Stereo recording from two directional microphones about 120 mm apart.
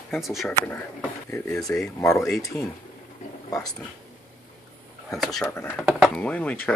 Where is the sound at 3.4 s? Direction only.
30° left (ahead or behind).